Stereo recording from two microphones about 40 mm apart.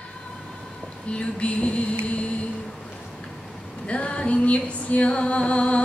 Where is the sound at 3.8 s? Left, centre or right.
Left.